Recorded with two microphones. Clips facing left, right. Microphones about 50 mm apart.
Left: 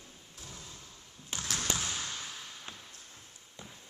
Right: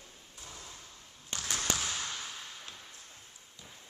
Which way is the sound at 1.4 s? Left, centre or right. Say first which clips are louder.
Even; centre.